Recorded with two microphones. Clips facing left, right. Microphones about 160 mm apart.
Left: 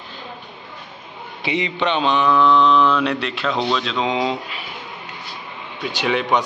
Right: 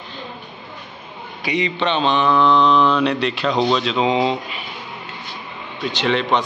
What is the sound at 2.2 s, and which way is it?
Mantra, 30° right (ahead or behind).